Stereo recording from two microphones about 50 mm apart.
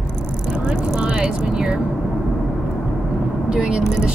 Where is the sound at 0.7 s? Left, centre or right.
Centre.